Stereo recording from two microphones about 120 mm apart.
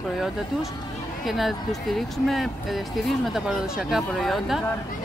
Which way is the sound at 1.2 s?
Centre (ahead or behind).